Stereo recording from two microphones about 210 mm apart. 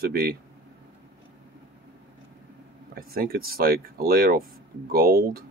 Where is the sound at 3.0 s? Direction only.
45° right (ahead or behind).